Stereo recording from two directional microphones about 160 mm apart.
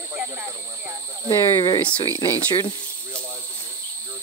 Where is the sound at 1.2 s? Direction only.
30° left (ahead or behind).